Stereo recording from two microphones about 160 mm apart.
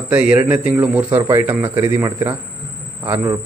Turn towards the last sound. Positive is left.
turn(degrees=-15)  # may be behind; listen again after turning